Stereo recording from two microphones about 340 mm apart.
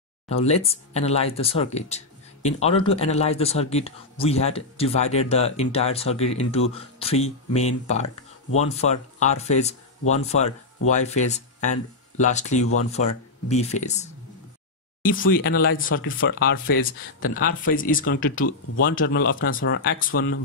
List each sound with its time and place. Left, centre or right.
0.3 s speech: centre